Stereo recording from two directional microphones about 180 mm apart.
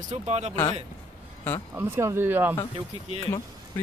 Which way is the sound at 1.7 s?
15° right (ahead or behind).